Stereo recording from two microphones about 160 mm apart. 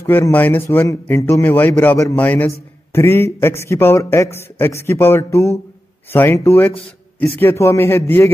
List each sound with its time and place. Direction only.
0.0 s a man's voice: 15° left (ahead or behind)